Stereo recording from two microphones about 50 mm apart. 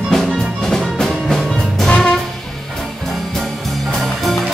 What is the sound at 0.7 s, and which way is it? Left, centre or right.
Music, centre.